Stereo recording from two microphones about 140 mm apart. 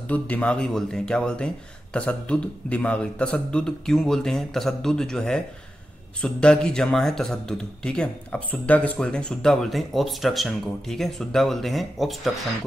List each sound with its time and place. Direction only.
0.1 s a man's voice: 10° left (ahead or behind)